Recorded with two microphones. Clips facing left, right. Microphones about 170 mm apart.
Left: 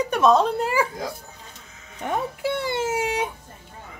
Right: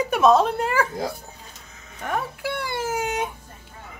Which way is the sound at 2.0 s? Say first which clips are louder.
Left 2 dB; 20° left (ahead or behind).